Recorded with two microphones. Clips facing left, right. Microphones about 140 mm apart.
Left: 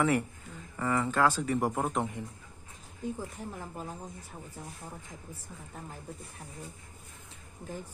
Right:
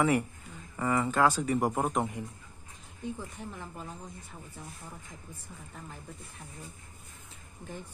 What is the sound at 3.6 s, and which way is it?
Speech, 35° left (ahead or behind).